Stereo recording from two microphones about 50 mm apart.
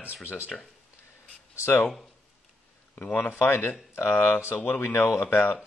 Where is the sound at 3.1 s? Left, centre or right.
Left.